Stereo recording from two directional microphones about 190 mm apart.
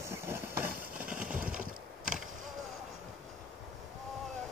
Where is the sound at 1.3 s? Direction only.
5° right (ahead or behind).